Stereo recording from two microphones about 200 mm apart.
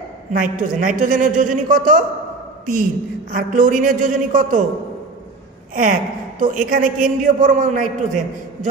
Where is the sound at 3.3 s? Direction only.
40° right (ahead or behind).